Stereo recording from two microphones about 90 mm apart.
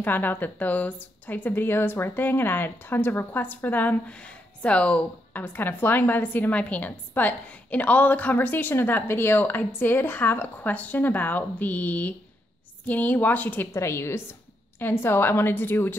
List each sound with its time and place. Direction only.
0.0 s speech: 20° left (ahead or behind)
13.7 s a woman's voice: 30° left (ahead or behind)